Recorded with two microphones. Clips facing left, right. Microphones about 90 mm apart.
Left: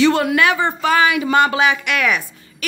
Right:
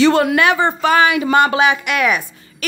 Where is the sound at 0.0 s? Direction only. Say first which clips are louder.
Right 2 dB; 40° right (ahead or behind).